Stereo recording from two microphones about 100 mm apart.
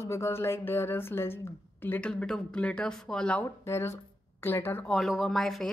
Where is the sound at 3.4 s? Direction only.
25° left (ahead or behind).